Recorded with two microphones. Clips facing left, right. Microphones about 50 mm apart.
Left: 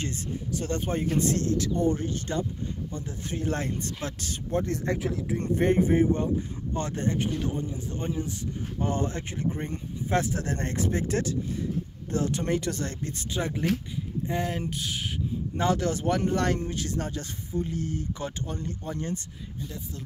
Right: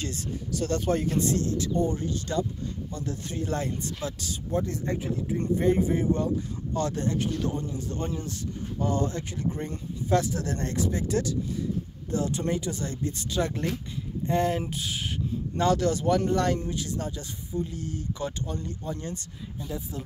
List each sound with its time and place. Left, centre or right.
0.0 s speech: left
4.8 s speech: left
5.6 s speech: left; by 8.3 s centre
8.7 s speech: left
13.4 s speech: centre
14.2 s speech: centre
15.5 s speech: left